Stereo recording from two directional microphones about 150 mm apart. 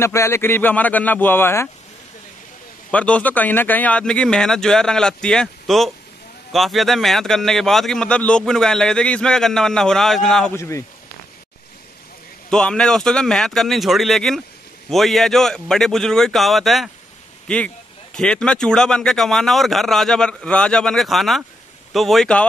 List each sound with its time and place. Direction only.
0.0 s speech: 20° left (ahead or behind)
2.9 s a man's voice: 10° left (ahead or behind)
10.5 s speech: 20° left (ahead or behind)
12.4 s a man's voice: 5° left (ahead or behind)
18.1 s a man's voice: 5° left (ahead or behind)